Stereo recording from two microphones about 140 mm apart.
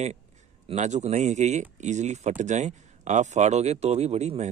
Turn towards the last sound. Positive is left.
turn(degrees=-50)  # may be behind; listen again after turning